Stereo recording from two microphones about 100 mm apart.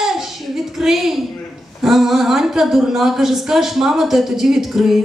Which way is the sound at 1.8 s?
5° right (ahead or behind).